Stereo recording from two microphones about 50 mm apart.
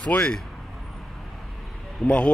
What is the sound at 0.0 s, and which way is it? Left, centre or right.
Speech, left.